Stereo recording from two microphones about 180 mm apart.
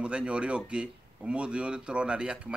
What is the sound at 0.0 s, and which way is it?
Speech, 5° right (ahead or behind).